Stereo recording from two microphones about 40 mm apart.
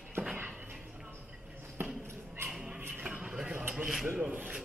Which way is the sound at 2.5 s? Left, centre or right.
Centre.